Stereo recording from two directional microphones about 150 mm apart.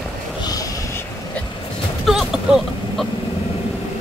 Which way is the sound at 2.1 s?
Centre (ahead or behind).